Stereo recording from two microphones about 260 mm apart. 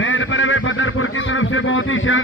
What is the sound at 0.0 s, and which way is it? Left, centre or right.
Speech, left.